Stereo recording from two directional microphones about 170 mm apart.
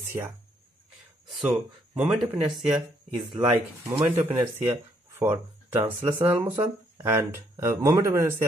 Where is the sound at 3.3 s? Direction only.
30° right (ahead or behind).